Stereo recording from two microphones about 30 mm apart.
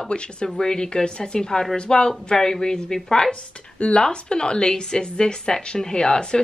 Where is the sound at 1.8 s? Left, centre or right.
Left.